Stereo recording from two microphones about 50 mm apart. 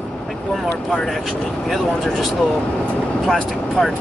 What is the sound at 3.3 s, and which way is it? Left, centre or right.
Speech, centre.